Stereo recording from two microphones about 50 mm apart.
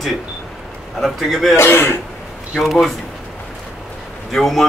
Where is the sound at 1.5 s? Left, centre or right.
Left.